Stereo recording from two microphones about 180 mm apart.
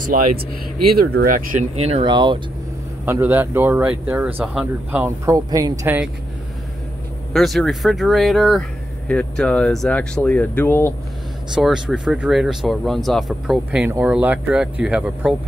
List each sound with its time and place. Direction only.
0.1 s speech: 50° right (ahead or behind)
1.8 s speech: 35° right (ahead or behind)
3.1 s speech: 10° right (ahead or behind)
7.3 s speech: centre (ahead or behind)
11.5 s speech: 5° right (ahead or behind)